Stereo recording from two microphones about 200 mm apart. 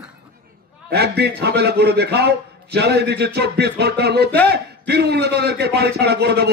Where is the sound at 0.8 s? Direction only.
55° right (ahead or behind).